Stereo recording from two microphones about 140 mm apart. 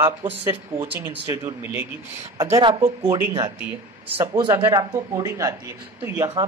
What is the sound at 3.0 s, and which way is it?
Speech, 20° right (ahead or behind).